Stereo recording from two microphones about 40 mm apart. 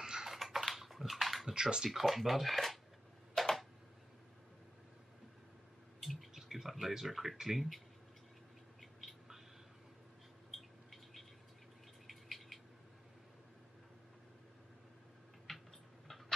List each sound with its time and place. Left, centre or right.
0.0 s typing: centre
0.3 s typing: centre
1.5 s speech: right
1.9 s speech: centre
3.3 s tick-tock: centre
6.3 s a sound: centre
7.1 s speech: centre
10.5 s a sound: centre
15.5 s tick-tock: centre